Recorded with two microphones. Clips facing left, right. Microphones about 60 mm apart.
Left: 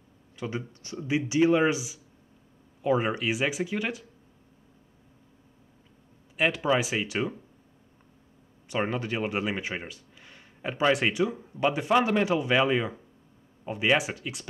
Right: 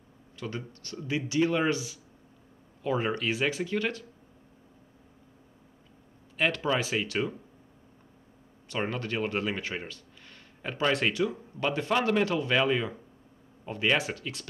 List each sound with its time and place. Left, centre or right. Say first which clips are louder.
0.4 s speech: left 3 dB; centre
6.3 s speech: left 3 dB; centre
8.6 s speech: left 3 dB; centre